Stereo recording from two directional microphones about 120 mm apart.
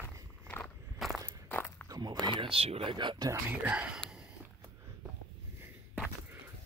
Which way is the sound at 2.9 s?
40° right (ahead or behind).